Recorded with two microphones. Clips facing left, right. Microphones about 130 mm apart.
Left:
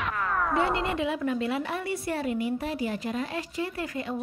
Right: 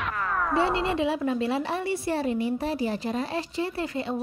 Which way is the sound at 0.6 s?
25° right (ahead or behind).